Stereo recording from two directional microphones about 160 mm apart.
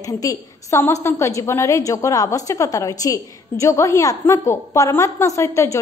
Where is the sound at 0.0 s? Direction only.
20° left (ahead or behind).